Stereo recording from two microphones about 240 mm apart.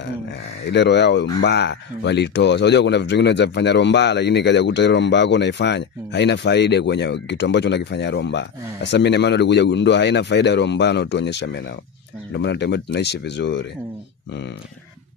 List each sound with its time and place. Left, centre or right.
0.7 s speech: left